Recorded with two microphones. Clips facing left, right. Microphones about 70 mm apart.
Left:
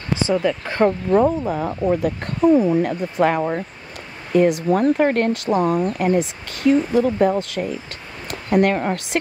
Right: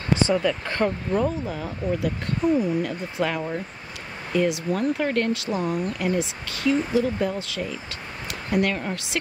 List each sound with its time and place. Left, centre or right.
0.3 s speech: centre; by 9.2 s left